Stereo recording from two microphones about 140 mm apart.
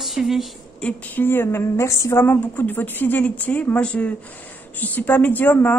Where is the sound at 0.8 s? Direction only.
10° left (ahead or behind).